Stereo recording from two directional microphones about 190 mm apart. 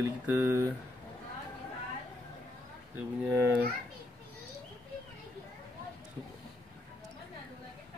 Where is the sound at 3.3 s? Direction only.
10° right (ahead or behind).